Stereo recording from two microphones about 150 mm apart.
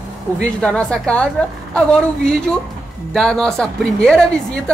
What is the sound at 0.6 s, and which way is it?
A woman's voice, 5° left (ahead or behind).